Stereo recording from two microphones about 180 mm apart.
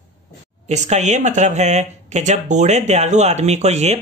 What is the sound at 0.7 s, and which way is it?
Speech, 40° right (ahead or behind).